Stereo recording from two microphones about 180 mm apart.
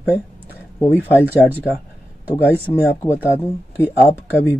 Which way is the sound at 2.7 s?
30° left (ahead or behind).